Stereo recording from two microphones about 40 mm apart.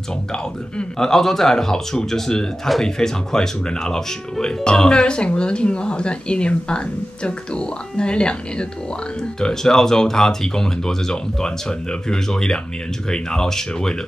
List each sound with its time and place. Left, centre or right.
0.3 s speech: centre
9.4 s speech: centre